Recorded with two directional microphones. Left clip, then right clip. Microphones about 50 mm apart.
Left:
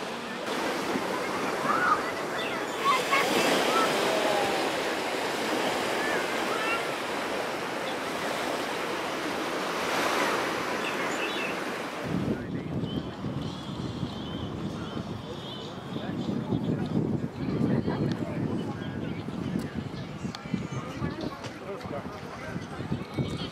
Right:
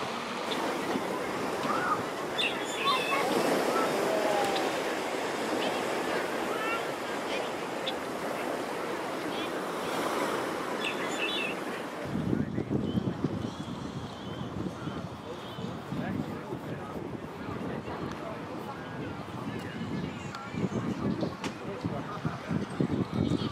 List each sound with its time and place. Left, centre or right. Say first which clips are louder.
1.3 s waves: left 4 dB; centre
2.3 s waves: even; centre
9.7 s waves: left 6 dB; right
10.8 s train: left 2 dB; centre